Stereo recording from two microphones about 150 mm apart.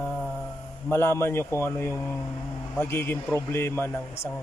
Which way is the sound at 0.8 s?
15° left (ahead or behind).